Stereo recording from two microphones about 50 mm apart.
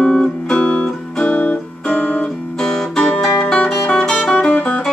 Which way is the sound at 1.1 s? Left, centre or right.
Left.